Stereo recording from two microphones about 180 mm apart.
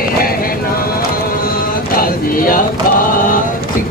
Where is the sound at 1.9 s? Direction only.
55° left (ahead or behind).